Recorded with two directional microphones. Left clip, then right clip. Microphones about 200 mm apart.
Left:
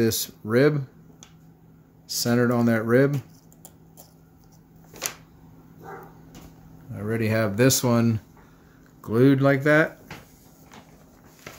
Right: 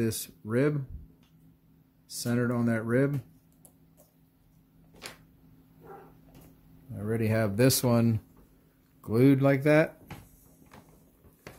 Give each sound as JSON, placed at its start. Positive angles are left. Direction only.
{"t": 0.0, "sound": "speech", "side_deg": 0}
{"t": 2.0, "sound": "speech", "side_deg": 0}
{"t": 7.0, "sound": "speech", "side_deg": -15}
{"t": 11.5, "sound": "a sound", "side_deg": -50}